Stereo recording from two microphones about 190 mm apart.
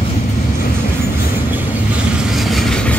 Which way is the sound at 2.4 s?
Centre (ahead or behind).